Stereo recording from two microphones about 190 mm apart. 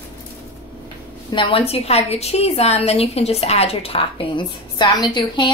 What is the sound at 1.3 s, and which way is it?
A woman's voice, 25° left (ahead or behind).